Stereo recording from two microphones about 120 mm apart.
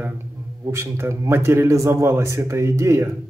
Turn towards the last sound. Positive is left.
turn(degrees=-25)  # may be behind; listen again after turning